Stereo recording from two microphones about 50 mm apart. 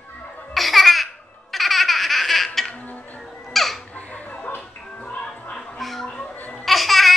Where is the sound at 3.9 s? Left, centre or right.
Left.